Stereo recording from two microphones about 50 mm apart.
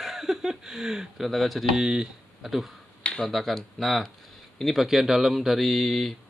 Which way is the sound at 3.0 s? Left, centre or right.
Centre.